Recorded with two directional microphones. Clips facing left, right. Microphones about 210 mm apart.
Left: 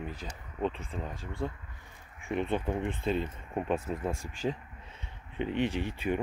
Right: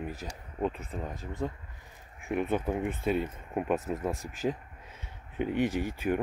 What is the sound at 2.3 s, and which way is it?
Speech, 5° right (ahead or behind).